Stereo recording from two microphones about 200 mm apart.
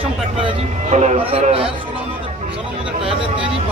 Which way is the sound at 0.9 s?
35° right (ahead or behind).